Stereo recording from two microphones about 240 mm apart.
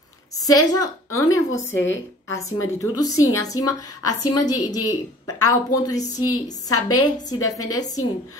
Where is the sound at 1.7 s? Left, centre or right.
Left.